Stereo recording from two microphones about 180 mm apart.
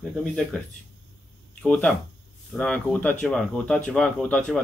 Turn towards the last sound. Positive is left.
turn(degrees=5)  # may be behind; listen again after turning